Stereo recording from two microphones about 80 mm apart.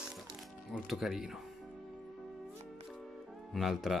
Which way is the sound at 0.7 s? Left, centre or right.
Centre.